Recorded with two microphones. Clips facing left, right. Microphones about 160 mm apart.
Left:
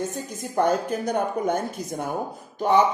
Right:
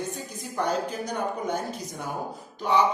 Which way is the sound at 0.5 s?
50° left (ahead or behind).